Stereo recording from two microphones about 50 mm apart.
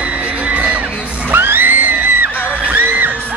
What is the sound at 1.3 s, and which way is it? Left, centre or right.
Music, right.